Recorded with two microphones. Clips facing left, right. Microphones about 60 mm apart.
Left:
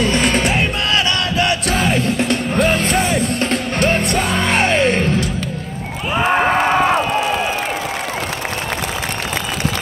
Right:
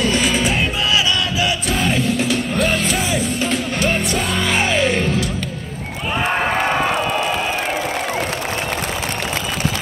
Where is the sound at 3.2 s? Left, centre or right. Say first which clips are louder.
Left 2 dB; left.